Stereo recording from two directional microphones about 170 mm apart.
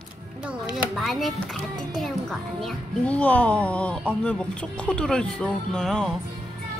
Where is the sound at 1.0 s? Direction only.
Centre (ahead or behind).